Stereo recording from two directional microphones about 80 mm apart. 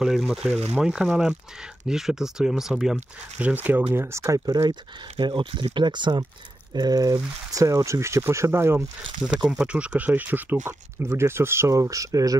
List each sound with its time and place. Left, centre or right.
0.0 s speech: centre
0.5 s speech: centre
3.3 s speech: right
5.2 s speech: right
6.7 s speech: right
9.4 s speech: centre
9.7 s speech: centre; by 12.4 s right